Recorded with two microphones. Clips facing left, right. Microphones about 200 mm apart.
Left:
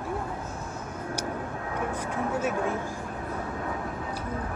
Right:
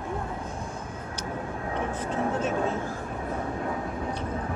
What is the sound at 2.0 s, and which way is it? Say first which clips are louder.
Speech: right 2 dB; 10° left (ahead or behind).